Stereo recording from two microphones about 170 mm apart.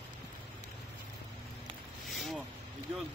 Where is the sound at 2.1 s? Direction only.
Centre (ahead or behind).